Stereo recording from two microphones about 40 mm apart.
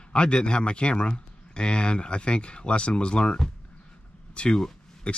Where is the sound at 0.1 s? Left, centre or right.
Left.